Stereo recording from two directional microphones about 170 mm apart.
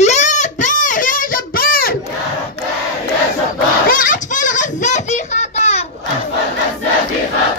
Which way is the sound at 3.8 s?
50° left (ahead or behind).